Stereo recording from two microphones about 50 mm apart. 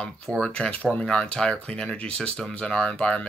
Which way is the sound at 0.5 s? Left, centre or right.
Centre.